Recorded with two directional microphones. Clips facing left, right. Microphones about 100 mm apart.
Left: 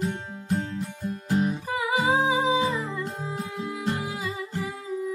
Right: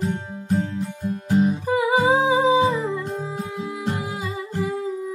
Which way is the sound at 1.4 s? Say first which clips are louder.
Right 7 dB; 30° right (ahead or behind).